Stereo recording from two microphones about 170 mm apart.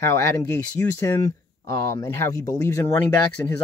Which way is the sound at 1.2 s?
20° left (ahead or behind).